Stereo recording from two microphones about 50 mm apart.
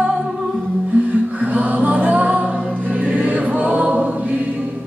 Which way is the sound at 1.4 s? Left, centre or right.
Right.